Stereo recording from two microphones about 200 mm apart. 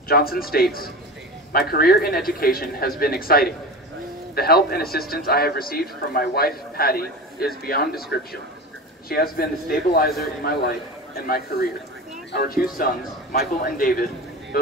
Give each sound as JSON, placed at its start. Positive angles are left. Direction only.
{"t": 0.1, "sound": "a man's voice", "side_deg": 50}